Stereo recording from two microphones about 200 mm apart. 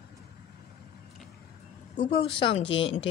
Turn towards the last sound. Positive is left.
turn(degrees=25)  # may be behind; listen again after turning